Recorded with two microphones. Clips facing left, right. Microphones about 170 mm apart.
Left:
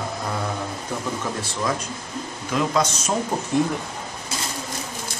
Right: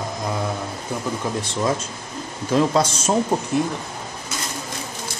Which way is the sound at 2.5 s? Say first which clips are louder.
Right 4 dB; 30° right (ahead or behind).